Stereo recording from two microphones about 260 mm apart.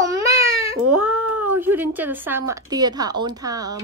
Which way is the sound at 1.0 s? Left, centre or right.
Centre.